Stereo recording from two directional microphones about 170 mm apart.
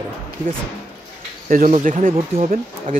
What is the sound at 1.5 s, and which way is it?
Speech, 45° right (ahead or behind).